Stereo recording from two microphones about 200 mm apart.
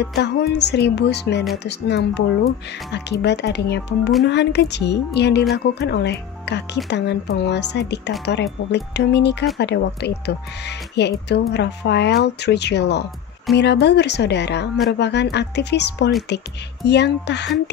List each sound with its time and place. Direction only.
0.0 s speech: 55° left (ahead or behind)